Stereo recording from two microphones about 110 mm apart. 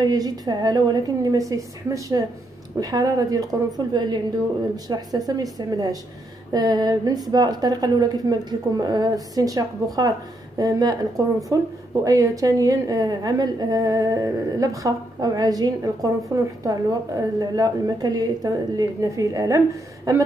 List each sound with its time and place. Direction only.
0.0 s speech: 35° right (ahead or behind)